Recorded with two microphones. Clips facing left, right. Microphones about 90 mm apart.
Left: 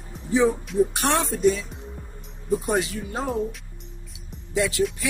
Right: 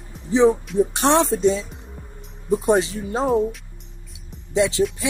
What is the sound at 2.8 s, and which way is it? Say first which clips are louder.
Speech: right 5 dB; 30° right (ahead or behind).